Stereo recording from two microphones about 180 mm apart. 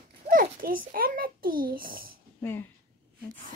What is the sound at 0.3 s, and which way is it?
A child's voice, 50° right (ahead or behind).